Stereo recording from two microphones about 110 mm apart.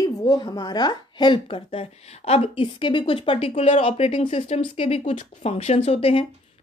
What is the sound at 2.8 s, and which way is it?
Speech, 50° left (ahead or behind).